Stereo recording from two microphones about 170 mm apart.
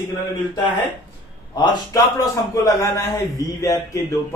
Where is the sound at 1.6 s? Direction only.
25° left (ahead or behind).